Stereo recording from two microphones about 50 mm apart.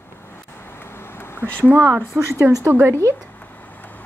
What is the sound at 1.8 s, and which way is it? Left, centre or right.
Speech, right.